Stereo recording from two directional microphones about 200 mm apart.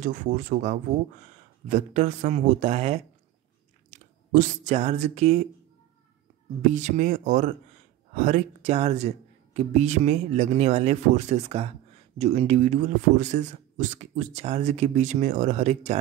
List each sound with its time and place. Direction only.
0.0 s a man's voice: 40° right (ahead or behind)
4.3 s a man's voice: 35° right (ahead or behind)
6.6 s a man's voice: 40° right (ahead or behind)